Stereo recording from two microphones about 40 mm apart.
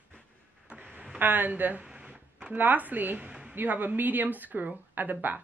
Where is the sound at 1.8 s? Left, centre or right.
Right.